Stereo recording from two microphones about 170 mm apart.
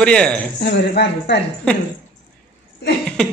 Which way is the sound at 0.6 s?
75° left (ahead or behind).